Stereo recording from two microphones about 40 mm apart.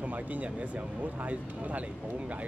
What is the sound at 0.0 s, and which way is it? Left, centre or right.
Speech, right.